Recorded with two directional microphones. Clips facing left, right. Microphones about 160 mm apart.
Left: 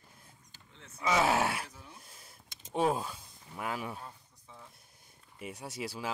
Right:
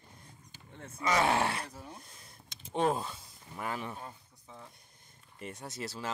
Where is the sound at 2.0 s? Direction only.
5° left (ahead or behind).